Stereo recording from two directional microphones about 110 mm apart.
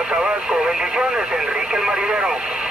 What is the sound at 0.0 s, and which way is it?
Speech, 10° right (ahead or behind).